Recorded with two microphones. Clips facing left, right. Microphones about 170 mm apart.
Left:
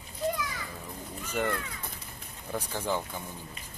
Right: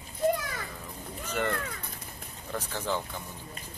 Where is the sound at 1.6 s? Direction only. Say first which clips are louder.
Right 2 dB; 50° right (ahead or behind).